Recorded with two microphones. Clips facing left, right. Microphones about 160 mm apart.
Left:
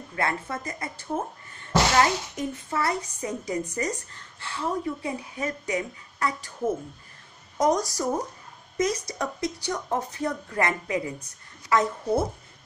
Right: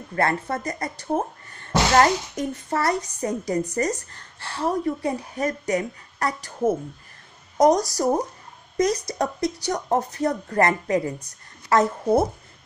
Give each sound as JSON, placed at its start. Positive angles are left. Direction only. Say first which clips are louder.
{"t": 0.1, "sound": "a woman's voice", "louder": "right 5 dB", "side_deg": -45}